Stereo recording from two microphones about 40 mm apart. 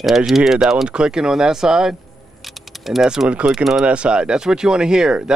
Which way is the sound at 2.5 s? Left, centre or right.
Centre.